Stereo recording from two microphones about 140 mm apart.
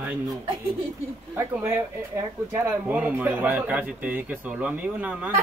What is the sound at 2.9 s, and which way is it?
A man's voice, 10° right (ahead or behind).